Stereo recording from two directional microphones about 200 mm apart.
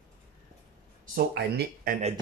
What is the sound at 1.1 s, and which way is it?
Speech, 45° right (ahead or behind).